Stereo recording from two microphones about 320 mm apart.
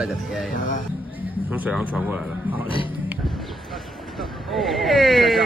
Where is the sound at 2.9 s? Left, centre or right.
Centre.